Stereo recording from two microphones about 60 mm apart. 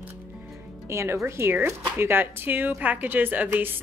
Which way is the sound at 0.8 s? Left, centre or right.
Right.